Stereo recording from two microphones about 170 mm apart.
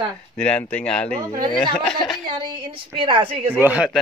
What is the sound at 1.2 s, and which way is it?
Speech, 20° right (ahead or behind).